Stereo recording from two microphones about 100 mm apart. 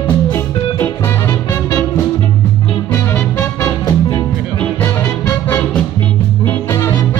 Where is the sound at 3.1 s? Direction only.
25° left (ahead or behind).